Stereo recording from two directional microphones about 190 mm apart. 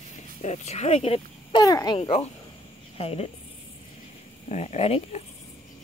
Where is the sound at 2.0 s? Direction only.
30° left (ahead or behind).